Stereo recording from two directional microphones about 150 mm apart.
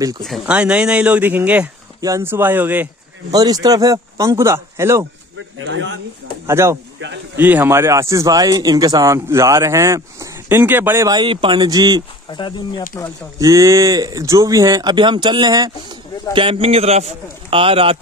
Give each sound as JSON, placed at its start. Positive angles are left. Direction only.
{"t": 0.2, "sound": "speech", "side_deg": -5}
{"t": 2.0, "sound": "speech", "side_deg": -20}
{"t": 3.3, "sound": "speech", "side_deg": -25}
{"t": 6.4, "sound": "speech", "side_deg": -15}
{"t": 12.3, "sound": "speech", "side_deg": 30}
{"t": 13.4, "sound": "speech", "side_deg": -20}
{"t": 16.3, "sound": "a man's voice", "side_deg": -35}